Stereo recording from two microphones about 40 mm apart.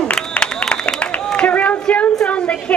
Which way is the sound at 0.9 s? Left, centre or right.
Left.